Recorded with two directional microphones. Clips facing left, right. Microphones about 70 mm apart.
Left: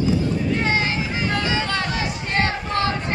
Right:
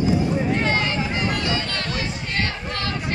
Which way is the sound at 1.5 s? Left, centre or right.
Centre.